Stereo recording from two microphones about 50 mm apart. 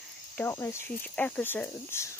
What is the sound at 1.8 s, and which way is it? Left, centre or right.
Speech, left.